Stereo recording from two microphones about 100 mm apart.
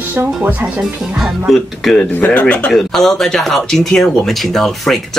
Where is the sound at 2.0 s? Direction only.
15° left (ahead or behind).